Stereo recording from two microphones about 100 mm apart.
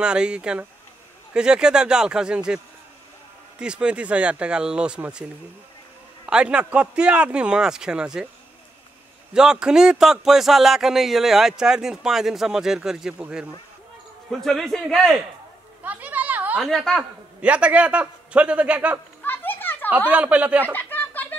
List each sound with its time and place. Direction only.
0.0 s a man's voice: 10° right (ahead or behind)
6.2 s a man's voice: 10° right (ahead or behind)
9.3 s a man's voice: 5° right (ahead or behind)
14.4 s speech: 5° left (ahead or behind)
15.8 s a sound: 15° right (ahead or behind)
16.5 s speech: centre (ahead or behind)
17.4 s a man's voice: 10° right (ahead or behind)
19.2 s children playing: 20° left (ahead or behind)
20.1 s a man's voice: 15° right (ahead or behind)
20.6 s a sound: 20° left (ahead or behind)